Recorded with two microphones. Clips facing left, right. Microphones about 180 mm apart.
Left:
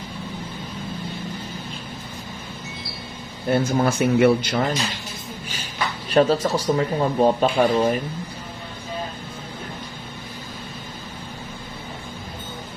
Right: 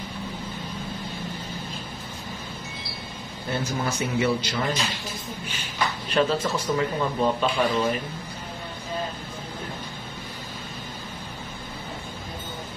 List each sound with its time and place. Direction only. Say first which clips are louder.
3.4 s speech: left 8 dB; 60° left (ahead or behind)
6.1 s speech: left 6 dB; 35° left (ahead or behind)